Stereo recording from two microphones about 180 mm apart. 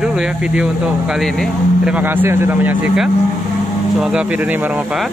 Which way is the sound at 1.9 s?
10° right (ahead or behind).